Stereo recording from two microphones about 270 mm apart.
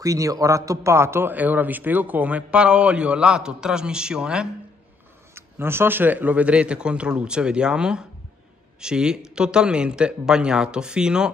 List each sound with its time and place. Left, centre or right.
0.0 s a man's voice: centre